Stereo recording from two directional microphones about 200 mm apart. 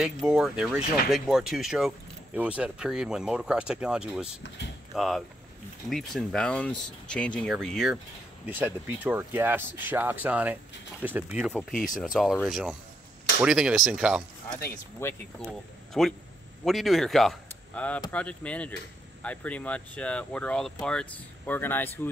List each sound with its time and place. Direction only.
0.0 s speech: centre (ahead or behind)
8.5 s speech: 10° right (ahead or behind)
11.7 s speech: 40° left (ahead or behind)
12.0 s speech: centre (ahead or behind)
15.0 s speech: 10° left (ahead or behind)
15.4 s speech: centre (ahead or behind)